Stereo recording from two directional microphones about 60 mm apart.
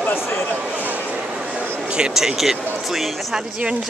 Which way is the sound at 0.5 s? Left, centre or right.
Right.